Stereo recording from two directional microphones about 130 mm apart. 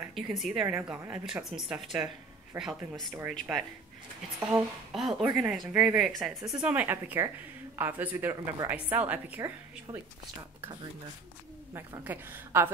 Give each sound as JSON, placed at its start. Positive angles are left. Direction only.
{"t": 0.1, "sound": "a woman's voice", "side_deg": 0}
{"t": 12.0, "sound": "a woman's voice", "side_deg": -15}